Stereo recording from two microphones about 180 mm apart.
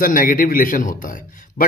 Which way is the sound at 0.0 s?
50° left (ahead or behind).